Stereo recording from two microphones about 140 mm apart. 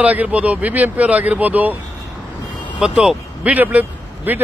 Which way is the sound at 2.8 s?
5° right (ahead or behind).